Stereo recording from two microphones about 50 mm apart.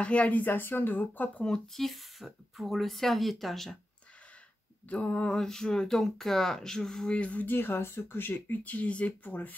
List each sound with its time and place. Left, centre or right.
0.0 s speech: left
1.7 s speech: centre
4.8 s a sound: left
5.4 s speech: centre
7.2 s a sound: left
7.4 s speech: left
8.6 s speech: left